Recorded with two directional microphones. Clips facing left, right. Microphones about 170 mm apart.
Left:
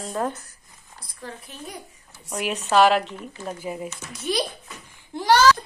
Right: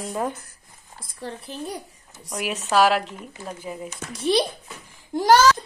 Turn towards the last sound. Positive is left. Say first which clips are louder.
# right 3 dB
turn(degrees=-45)  # may be behind; listen again after turning